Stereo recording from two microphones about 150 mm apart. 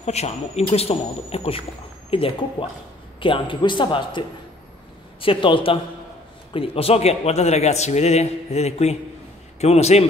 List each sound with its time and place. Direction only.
0.0 s a man's voice: 45° left (ahead or behind)
5.2 s a man's voice: 35° left (ahead or behind)